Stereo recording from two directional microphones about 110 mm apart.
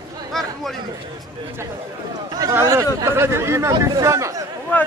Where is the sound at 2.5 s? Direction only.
25° right (ahead or behind).